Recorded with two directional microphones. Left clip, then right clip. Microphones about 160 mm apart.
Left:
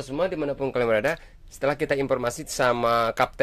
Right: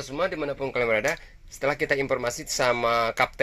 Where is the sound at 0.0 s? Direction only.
40° left (ahead or behind).